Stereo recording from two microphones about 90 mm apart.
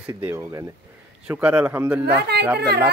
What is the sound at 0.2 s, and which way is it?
Speech, 25° right (ahead or behind).